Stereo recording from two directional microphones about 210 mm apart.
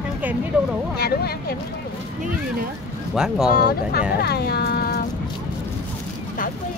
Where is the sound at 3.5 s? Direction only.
45° left (ahead or behind).